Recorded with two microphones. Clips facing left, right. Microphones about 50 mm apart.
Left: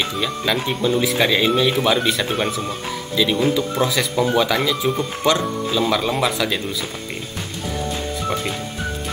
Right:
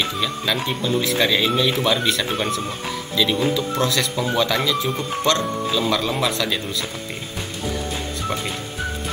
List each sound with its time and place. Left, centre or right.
0.0 s speech: centre